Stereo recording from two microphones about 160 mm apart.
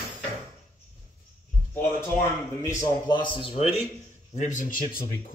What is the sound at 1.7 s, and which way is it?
A man's voice, 15° left (ahead or behind).